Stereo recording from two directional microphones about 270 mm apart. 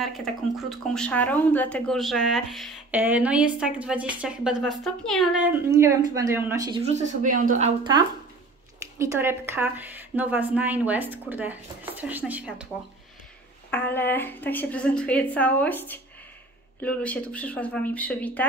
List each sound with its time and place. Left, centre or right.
0.0 s speech: centre
6.8 s speech: right
8.9 s a woman's voice: centre
13.7 s a woman's voice: centre